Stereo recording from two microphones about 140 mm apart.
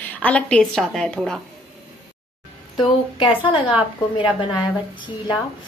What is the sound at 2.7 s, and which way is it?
A woman's voice, 35° left (ahead or behind).